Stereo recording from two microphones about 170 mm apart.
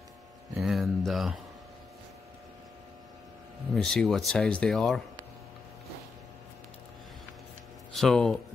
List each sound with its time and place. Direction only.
0.6 s a sound: centre (ahead or behind)
3.7 s speech: 5° left (ahead or behind)
7.9 s speech: 5° left (ahead or behind)